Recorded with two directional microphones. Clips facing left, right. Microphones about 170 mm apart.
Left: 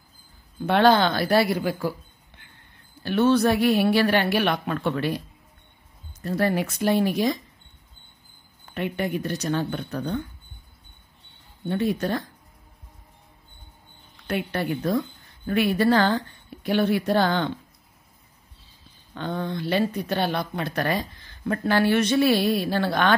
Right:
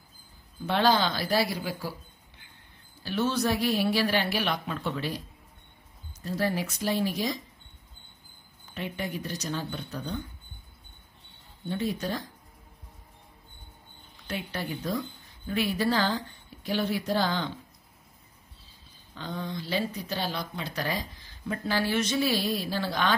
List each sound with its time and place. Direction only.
0.7 s speech: 60° left (ahead or behind)
6.2 s speech: 60° left (ahead or behind)
8.7 s speech: 60° left (ahead or behind)
11.6 s speech: 60° left (ahead or behind)
14.2 s speech: 60° left (ahead or behind)
19.1 s speech: 60° left (ahead or behind)